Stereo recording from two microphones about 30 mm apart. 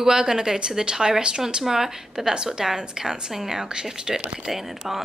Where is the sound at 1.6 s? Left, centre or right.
Centre.